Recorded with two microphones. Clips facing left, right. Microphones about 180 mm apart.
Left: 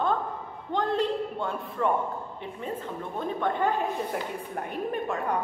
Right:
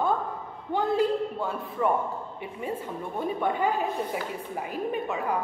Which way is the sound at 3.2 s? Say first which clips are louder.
Right 1 dB; 10° right (ahead or behind).